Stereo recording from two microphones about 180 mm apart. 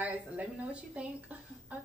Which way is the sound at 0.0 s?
5° right (ahead or behind).